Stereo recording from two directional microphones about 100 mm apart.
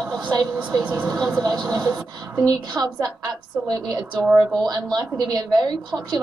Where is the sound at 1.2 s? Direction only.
45° right (ahead or behind).